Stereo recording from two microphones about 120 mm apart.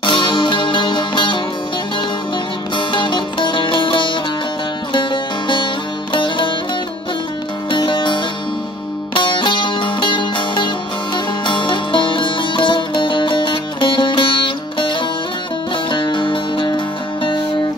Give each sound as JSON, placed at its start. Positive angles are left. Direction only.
{"t": 0.0, "sound": "music", "side_deg": 45}
{"t": 2.7, "sound": "music", "side_deg": 45}
{"t": 6.1, "sound": "sitar", "side_deg": 45}
{"t": 7.7, "sound": "music", "side_deg": 45}